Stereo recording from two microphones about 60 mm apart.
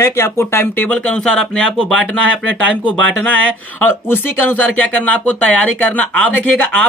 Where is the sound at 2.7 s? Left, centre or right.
Left.